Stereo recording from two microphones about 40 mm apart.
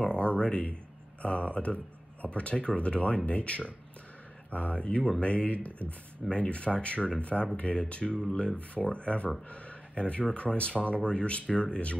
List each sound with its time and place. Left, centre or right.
0.0 s speech: left